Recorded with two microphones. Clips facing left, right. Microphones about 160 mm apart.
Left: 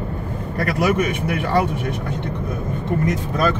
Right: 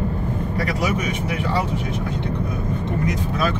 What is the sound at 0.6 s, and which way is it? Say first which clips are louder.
Speech: left 6 dB; 60° left (ahead or behind).